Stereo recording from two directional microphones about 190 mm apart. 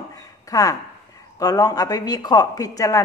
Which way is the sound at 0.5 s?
20° left (ahead or behind).